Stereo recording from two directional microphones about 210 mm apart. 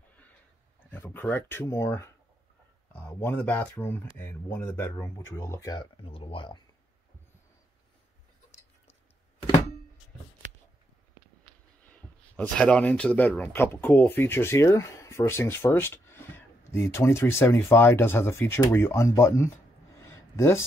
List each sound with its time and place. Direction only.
0.9 s speech: 10° left (ahead or behind)
11.9 s speech: 5° left (ahead or behind)
20.0 s a sound: 10° left (ahead or behind)